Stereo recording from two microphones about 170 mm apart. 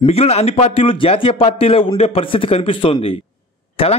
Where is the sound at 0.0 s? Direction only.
35° left (ahead or behind).